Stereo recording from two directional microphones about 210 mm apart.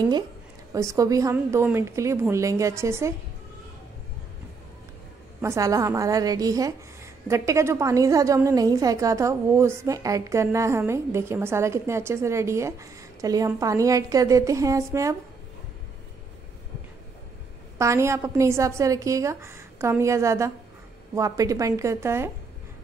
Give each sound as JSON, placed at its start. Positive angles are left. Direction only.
{"t": 0.7, "sound": "a woman's voice", "side_deg": -15}
{"t": 5.4, "sound": "a woman's voice", "side_deg": -15}
{"t": 17.7, "sound": "a woman's voice", "side_deg": -15}